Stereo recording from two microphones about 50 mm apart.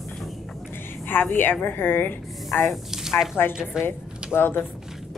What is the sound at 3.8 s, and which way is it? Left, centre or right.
Speech, left.